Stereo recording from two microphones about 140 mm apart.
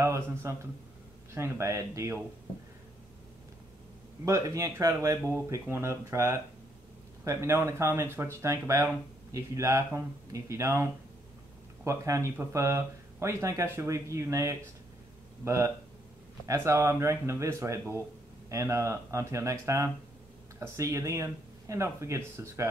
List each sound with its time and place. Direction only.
0.0 s a man's voice: 20° right (ahead or behind)
4.2 s speech: 20° right (ahead or behind)